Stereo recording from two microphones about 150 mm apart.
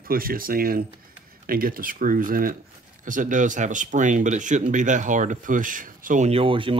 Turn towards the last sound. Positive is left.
turn(degrees=-35)  # may be behind; listen again after turning